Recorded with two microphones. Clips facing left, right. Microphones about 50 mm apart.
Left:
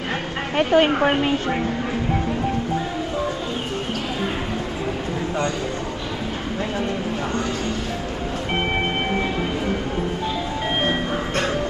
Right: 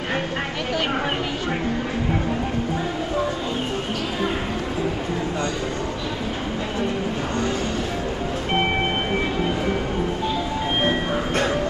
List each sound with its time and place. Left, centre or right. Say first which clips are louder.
0.6 s speech: left 11 dB; left